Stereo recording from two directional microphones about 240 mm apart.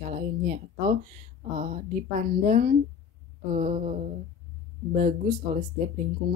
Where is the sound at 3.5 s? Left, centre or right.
Right.